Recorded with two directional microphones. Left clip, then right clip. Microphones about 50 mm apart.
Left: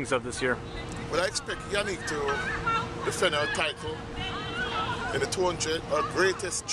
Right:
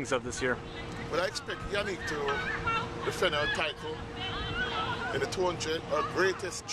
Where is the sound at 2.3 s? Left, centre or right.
Left.